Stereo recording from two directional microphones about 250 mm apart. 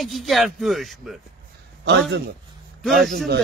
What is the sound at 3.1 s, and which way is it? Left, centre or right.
Speech, right.